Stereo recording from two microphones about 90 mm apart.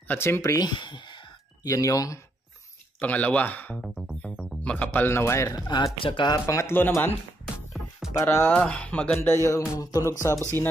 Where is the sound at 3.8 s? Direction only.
Centre (ahead or behind); by 5.6 s 35° left (ahead or behind).